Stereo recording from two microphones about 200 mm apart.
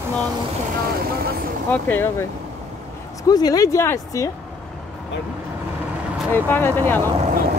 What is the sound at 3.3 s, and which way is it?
Speech, 20° left (ahead or behind).